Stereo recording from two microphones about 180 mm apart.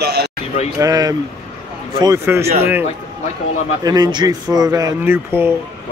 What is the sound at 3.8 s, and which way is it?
Speech, 20° right (ahead or behind).